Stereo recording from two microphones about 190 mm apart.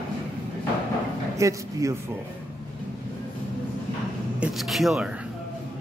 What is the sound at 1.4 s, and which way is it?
Speech, 15° right (ahead or behind).